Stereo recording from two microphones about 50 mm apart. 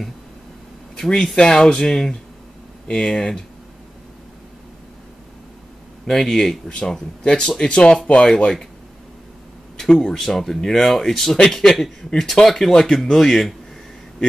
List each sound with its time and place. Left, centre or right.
0.9 s speech: centre
6.0 s speech: centre
9.8 s speech: centre